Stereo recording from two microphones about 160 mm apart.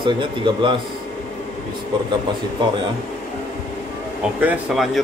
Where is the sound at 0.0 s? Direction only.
30° right (ahead or behind).